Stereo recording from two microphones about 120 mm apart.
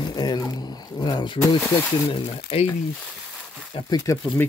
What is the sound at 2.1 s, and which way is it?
Speech, 45° left (ahead or behind).